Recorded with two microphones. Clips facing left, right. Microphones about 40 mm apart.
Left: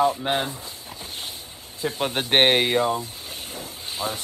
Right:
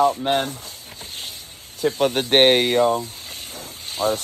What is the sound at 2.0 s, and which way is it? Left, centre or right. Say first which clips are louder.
Speech: right 3 dB; centre.